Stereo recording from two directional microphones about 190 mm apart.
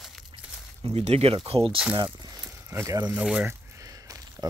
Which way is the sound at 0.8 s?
30° right (ahead or behind).